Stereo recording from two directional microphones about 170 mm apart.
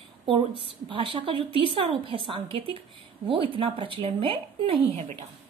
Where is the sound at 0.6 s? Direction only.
30° right (ahead or behind).